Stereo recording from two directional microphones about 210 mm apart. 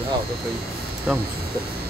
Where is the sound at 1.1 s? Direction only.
5° right (ahead or behind).